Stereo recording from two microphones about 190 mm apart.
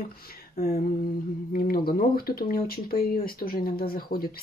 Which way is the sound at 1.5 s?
50° left (ahead or behind).